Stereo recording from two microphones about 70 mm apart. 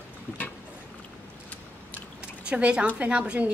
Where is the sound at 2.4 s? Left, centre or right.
Centre.